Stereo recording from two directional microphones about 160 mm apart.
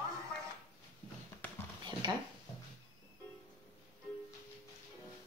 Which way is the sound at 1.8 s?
30° right (ahead or behind).